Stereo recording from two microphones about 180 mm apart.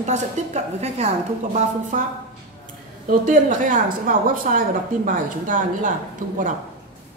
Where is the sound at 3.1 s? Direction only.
45° right (ahead or behind).